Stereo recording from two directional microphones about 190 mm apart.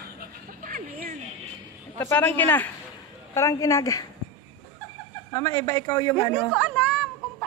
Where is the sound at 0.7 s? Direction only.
50° right (ahead or behind).